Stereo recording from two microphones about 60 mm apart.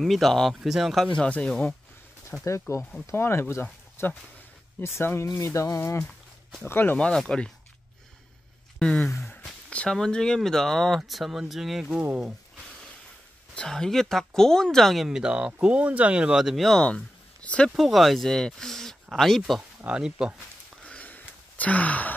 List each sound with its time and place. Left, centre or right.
0.0 s speech: centre
0.6 s speech: centre
1.0 s speech: centre
3.1 s speech: left
6.6 s speech: left
7.0 s speech: centre
8.7 s speech: centre
13.7 s speech: centre
15.0 s speech: centre
16.8 s a sound: centre
17.6 s speech: centre
19.9 s speech: centre
20.8 s a sound: left